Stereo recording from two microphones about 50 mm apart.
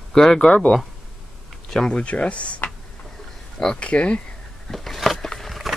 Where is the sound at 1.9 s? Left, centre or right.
Left.